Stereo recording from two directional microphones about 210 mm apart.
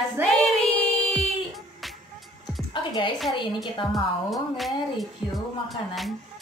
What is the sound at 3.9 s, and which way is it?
Speech, centre (ahead or behind).